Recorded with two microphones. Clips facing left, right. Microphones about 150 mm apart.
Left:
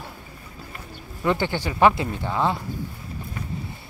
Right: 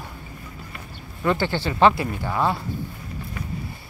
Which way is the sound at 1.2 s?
15° left (ahead or behind).